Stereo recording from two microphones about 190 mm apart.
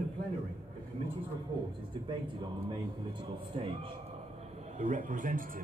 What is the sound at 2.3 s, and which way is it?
A man's voice, 25° right (ahead or behind).